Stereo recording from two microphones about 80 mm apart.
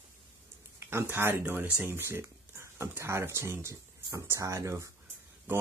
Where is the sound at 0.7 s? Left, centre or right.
Right.